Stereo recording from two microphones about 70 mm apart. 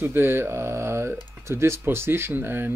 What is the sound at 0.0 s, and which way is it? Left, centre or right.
Speech, right.